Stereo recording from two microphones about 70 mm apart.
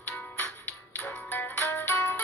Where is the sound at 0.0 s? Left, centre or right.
Left.